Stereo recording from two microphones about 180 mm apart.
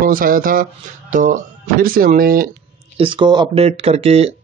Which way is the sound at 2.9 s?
30° right (ahead or behind).